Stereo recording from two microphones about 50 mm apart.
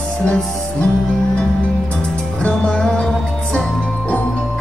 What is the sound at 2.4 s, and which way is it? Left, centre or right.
Music, centre.